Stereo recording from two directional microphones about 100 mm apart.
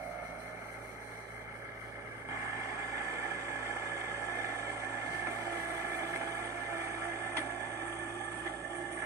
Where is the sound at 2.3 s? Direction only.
30° right (ahead or behind).